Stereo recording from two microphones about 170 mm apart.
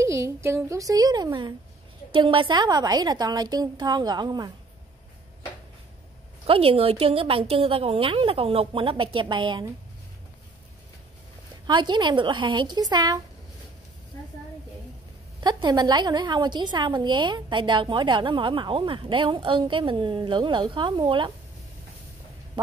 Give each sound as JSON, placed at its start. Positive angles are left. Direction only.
{"t": 0.0, "sound": "a woman's voice", "side_deg": -15}
{"t": 6.4, "sound": "speech", "side_deg": -35}
{"t": 11.6, "sound": "a woman's voice", "side_deg": -25}
{"t": 15.4, "sound": "a woman's voice", "side_deg": -25}